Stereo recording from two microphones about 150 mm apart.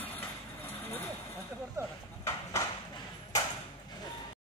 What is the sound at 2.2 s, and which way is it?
Clip-clop, 20° left (ahead or behind).